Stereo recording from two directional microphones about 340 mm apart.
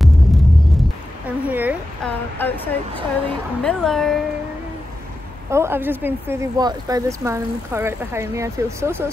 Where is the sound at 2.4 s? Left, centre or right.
Centre.